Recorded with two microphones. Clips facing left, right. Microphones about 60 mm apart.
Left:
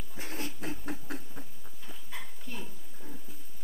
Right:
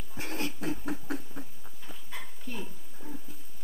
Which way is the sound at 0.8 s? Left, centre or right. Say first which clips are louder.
Right 4 dB; right.